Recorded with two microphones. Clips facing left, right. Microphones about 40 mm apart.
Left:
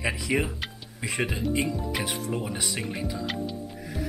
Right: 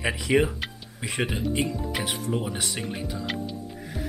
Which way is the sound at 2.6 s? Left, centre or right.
Centre.